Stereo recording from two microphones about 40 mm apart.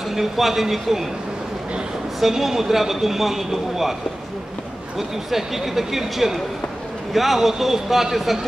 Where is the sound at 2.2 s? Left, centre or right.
Centre.